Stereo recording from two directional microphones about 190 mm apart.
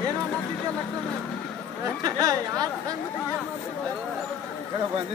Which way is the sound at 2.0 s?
20° right (ahead or behind).